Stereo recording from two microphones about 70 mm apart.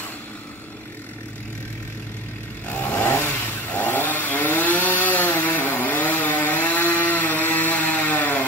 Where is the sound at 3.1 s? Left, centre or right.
Left.